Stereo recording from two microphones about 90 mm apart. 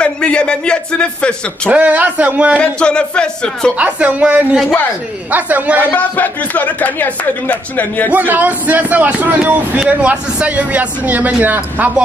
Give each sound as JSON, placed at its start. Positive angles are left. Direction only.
{"t": 0.0, "sound": "a man's voice", "side_deg": 10}
{"t": 1.7, "sound": "a man's voice", "side_deg": -15}
{"t": 2.6, "sound": "speech", "side_deg": 10}
{"t": 3.7, "sound": "a man's voice", "side_deg": -15}
{"t": 5.8, "sound": "a man's voice", "side_deg": 20}
{"t": 8.1, "sound": "a man's voice", "side_deg": -20}